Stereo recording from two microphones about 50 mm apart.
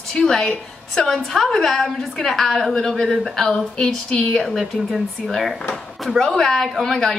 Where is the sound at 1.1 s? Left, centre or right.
Centre.